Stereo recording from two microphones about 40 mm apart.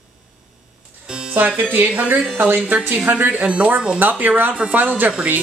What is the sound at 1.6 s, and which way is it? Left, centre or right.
Speech, right.